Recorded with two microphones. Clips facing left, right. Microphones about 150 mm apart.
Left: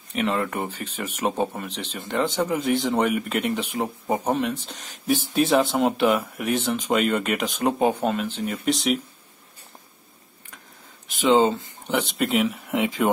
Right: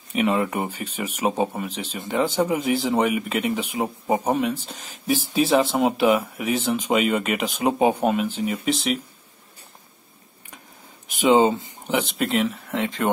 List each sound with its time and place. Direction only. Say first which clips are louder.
0.1 s speech: right 3 dB; 10° right (ahead or behind)
8.6 s speech: left 3 dB; centre (ahead or behind)
11.1 s speech: right 1 dB; 15° right (ahead or behind)
11.9 s speech: even; centre (ahead or behind)